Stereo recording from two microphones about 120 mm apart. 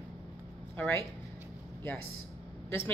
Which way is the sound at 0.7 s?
15° left (ahead or behind).